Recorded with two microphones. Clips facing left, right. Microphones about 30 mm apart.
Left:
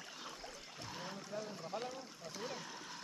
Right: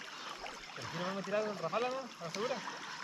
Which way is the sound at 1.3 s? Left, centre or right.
Right.